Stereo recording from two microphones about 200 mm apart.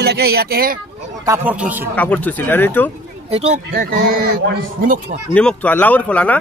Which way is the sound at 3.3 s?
30° right (ahead or behind).